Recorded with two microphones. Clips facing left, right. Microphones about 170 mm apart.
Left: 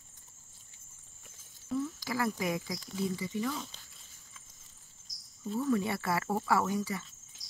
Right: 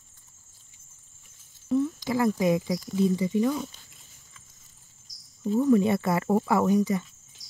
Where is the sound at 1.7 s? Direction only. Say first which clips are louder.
Right 9 dB; 20° right (ahead or behind).